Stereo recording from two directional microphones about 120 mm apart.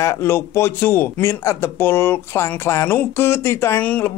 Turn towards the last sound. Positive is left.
turn(degrees=15)  # may be behind; listen again after turning